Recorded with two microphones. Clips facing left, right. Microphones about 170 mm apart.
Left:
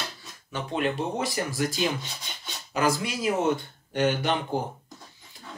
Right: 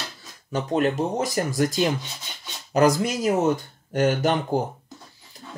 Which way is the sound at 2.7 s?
40° right (ahead or behind).